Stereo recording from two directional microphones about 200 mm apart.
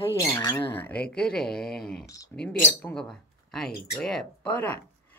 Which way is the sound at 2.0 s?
15° left (ahead or behind).